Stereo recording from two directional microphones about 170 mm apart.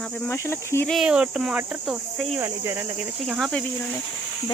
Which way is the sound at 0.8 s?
Centre (ahead or behind).